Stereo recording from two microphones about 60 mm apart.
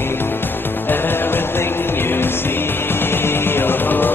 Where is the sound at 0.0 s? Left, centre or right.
Left.